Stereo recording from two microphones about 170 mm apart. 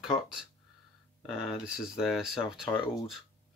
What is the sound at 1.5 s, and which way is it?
Speech, 5° right (ahead or behind).